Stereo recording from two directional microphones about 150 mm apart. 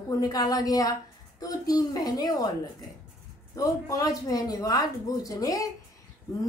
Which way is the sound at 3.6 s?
25° left (ahead or behind).